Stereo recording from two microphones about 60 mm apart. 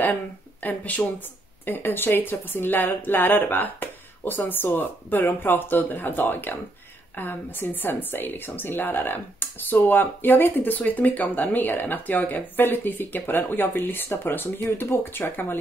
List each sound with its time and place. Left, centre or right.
0.6 s a woman's voice: left